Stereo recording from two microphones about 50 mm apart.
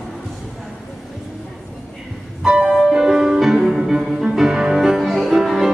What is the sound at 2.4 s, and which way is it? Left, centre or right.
Music, centre.